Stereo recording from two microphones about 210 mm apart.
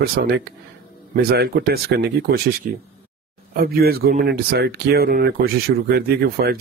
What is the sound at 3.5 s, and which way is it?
Speech, 45° right (ahead or behind).